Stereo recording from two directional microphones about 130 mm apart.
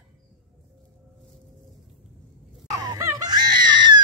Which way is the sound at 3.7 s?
35° right (ahead or behind).